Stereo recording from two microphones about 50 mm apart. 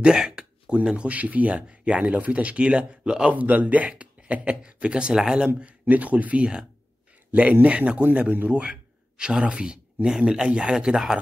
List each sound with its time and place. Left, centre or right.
0.0 s a sound: centre
0.8 s speech: right
3.3 s speech: right; by 5.5 s centre
5.9 s speech: right
7.6 s speech: right